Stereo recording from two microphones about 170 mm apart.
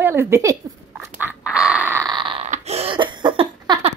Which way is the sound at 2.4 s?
40° right (ahead or behind).